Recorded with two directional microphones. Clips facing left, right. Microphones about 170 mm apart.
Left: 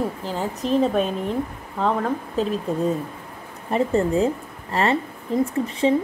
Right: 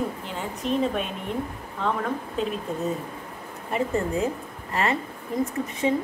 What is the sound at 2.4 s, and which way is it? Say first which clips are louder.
Speech: left 4 dB; 40° left (ahead or behind).